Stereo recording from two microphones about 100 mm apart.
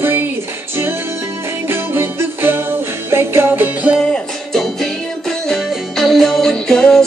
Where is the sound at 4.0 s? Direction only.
5° left (ahead or behind).